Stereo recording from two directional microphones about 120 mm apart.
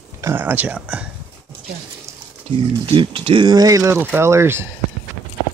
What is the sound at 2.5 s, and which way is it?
Speech, 45° right (ahead or behind).